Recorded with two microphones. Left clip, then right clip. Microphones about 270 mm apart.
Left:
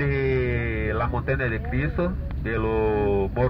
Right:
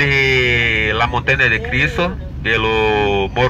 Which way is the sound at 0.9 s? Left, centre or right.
Right.